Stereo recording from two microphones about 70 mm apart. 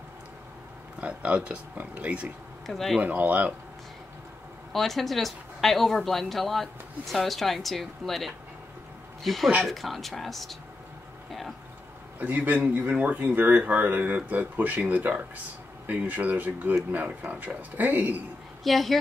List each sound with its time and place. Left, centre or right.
1.0 s speech: centre
2.6 s speech: centre
3.0 s speech: right
4.7 s a woman's voice: centre
12.2 s speech: right
18.6 s a woman's voice: centre